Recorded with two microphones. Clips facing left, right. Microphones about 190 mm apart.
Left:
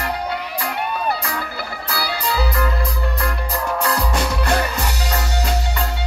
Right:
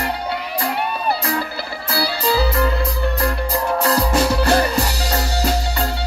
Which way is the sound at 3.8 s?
30° right (ahead or behind).